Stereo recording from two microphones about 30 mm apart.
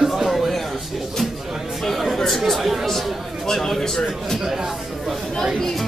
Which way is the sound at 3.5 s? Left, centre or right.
Centre.